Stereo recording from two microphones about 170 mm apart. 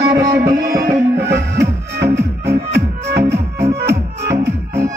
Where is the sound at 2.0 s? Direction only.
75° right (ahead or behind).